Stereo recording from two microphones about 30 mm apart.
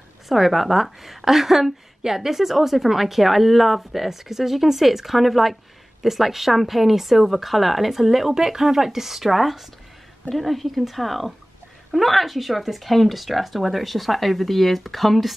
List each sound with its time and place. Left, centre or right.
0.3 s a woman's voice: centre